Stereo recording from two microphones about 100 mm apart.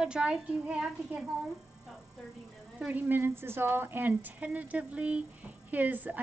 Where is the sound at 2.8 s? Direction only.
15° right (ahead or behind).